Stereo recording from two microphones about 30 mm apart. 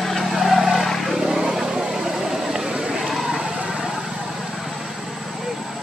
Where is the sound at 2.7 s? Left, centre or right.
Right; by 5.8 s centre.